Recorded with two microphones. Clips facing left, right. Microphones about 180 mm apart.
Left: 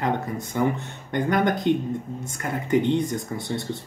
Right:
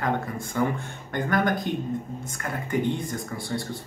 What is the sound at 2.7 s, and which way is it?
Speech, 20° left (ahead or behind).